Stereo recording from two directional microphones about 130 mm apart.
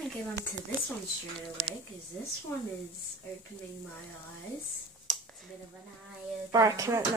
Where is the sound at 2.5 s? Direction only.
20° left (ahead or behind).